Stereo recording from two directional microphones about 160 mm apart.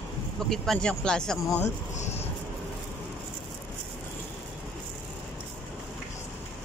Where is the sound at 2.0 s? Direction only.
45° left (ahead or behind).